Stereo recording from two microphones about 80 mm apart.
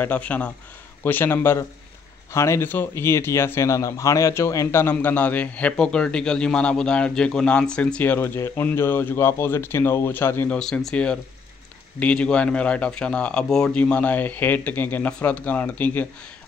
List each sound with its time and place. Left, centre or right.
0.0 s a man's voice: centre
8.0 s a man's voice: left
10.5 s a man's voice: centre; by 16.1 s left